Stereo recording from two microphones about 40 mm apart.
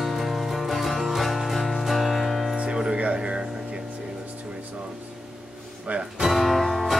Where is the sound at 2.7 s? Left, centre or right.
Right.